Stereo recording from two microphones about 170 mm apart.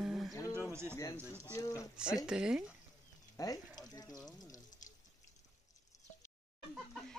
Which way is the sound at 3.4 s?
20° left (ahead or behind).